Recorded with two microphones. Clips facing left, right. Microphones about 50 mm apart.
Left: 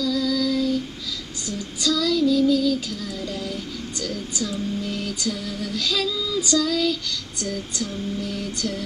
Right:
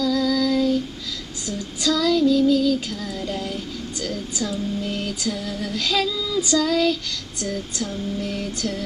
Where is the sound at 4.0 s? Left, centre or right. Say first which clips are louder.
Right 1 dB; right.